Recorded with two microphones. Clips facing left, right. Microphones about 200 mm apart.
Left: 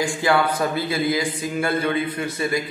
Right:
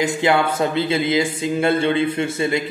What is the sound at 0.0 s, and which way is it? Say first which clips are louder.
Speech: right 2 dB; 20° right (ahead or behind).